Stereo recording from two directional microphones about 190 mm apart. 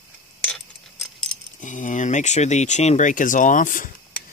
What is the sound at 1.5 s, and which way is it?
Speech, 40° left (ahead or behind).